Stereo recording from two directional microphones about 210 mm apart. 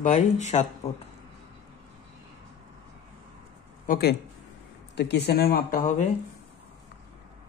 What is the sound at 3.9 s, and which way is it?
Speech, 50° left (ahead or behind).